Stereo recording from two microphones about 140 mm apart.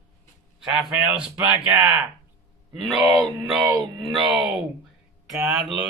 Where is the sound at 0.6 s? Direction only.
5° right (ahead or behind).